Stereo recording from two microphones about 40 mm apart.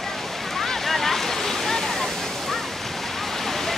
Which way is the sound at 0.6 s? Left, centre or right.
Centre.